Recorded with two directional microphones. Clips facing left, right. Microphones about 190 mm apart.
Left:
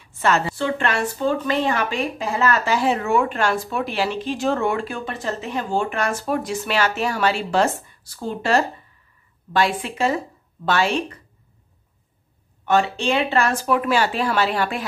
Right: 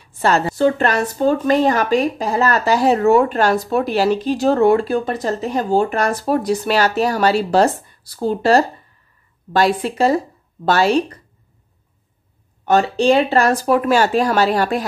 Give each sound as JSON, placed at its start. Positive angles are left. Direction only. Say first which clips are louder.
{"t": 0.0, "sound": "a woman's voice", "louder": "right 3 dB", "side_deg": -35}
{"t": 12.6, "sound": "a woman's voice", "louder": "right 6 dB", "side_deg": -40}